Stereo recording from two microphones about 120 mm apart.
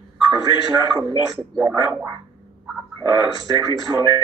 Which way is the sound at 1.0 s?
35° right (ahead or behind).